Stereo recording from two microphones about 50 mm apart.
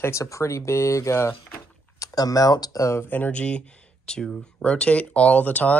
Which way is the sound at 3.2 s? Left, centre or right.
Left.